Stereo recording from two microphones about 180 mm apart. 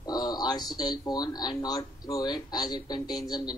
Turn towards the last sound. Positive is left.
turn(degrees=20)  # may be behind; listen again after turning